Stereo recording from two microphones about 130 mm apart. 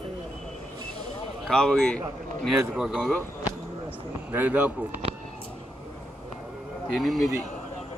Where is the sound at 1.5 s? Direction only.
5° left (ahead or behind).